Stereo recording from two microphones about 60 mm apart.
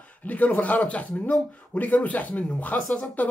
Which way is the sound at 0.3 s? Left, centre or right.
Left.